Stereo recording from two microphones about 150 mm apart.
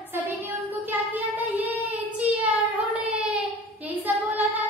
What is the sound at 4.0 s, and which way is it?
Child singing, 10° right (ahead or behind).